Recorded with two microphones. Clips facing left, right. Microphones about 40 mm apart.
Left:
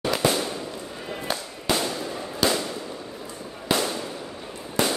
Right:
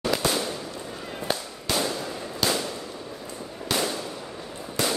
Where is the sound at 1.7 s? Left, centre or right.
Centre.